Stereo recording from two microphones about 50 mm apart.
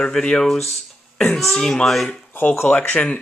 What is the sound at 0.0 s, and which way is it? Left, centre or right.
Speech, centre.